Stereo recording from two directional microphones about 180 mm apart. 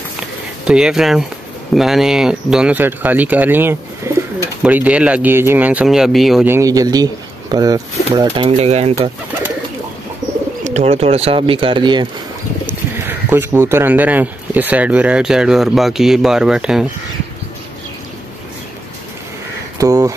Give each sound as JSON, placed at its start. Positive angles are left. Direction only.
{"t": 0.7, "sound": "speech", "side_deg": -5}
{"t": 6.4, "sound": "speech", "side_deg": -15}
{"t": 8.5, "sound": "speech", "side_deg": -35}
{"t": 10.6, "sound": "speech", "side_deg": -40}
{"t": 13.0, "sound": "speech", "side_deg": -10}
{"t": 19.8, "sound": "speech", "side_deg": -20}